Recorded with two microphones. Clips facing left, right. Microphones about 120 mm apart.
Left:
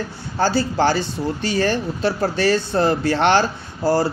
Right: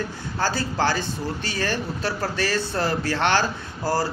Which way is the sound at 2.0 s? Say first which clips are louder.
Left 9 dB; 25° left (ahead or behind).